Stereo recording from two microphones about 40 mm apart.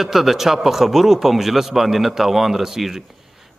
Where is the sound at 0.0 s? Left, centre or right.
Centre.